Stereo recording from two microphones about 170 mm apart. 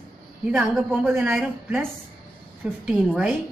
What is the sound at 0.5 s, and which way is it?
A woman's voice, 5° right (ahead or behind).